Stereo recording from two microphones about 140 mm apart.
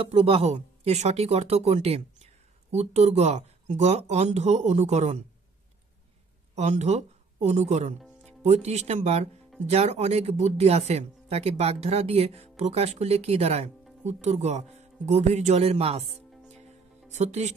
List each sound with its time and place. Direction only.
0.0 s speech: 45° right (ahead or behind)
6.5 s speech: 55° right (ahead or behind)
17.1 s speech: 55° right (ahead or behind)